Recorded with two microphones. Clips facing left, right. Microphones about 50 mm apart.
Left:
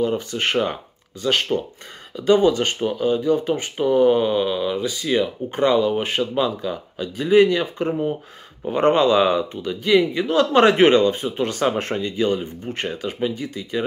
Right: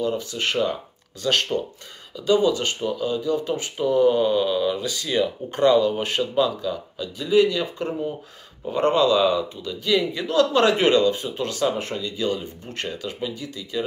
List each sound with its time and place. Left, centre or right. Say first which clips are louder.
0.0 s speech: left 3 dB; left
1.2 s speech: left 2 dB; centre
2.1 s speech: left 3 dB; left
11.5 s speech: left 3 dB; left
12.2 s speech: left 4 dB; left